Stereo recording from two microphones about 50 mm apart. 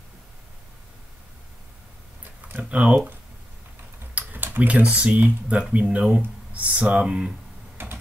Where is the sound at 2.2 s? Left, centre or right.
Right.